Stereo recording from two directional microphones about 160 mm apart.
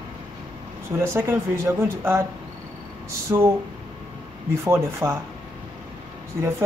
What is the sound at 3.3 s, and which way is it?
Female singing, 15° right (ahead or behind).